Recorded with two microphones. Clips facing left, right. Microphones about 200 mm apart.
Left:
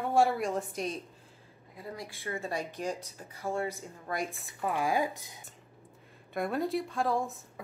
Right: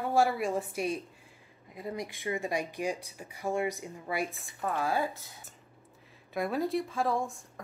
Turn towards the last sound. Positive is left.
turn(degrees=0)  # may be behind; listen again after turning